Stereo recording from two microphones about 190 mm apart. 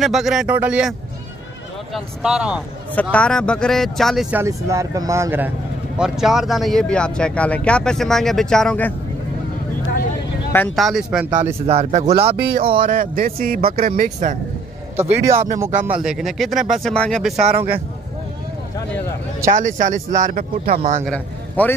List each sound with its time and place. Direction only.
0.0 s speech: centre (ahead or behind)
2.0 s speech: 5° right (ahead or behind)
2.9 s speech: 10° left (ahead or behind)
4.4 s speech: 15° right (ahead or behind)
5.9 s speech: 5° right (ahead or behind)
10.8 s speech: centre (ahead or behind)
11.6 s speech: 30° right (ahead or behind)
12.3 s speech: 55° right (ahead or behind)
15.0 s speech: 10° right (ahead or behind)
19.4 s speech: 40° right (ahead or behind)
21.0 s a man's voice: 5° left (ahead or behind)